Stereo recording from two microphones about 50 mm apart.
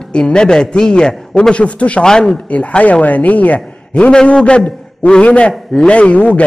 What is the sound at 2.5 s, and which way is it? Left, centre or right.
A man's voice, left.